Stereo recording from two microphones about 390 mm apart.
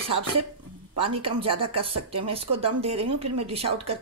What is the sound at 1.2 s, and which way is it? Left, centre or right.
Speech, centre.